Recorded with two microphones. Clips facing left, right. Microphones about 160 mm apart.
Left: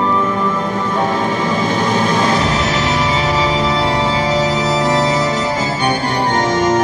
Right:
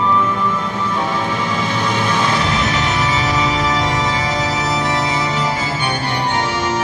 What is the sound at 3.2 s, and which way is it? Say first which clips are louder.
Organ: left 2 dB; 30° left (ahead or behind).